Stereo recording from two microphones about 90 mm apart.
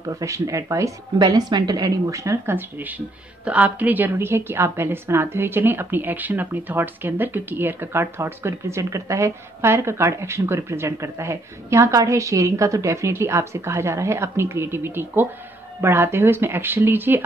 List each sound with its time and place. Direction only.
0.2 s speech: 35° right (ahead or behind)
1.1 s speech: 50° right (ahead or behind); by 2.5 s 35° right (ahead or behind)
2.5 s a woman's voice: 20° right (ahead or behind)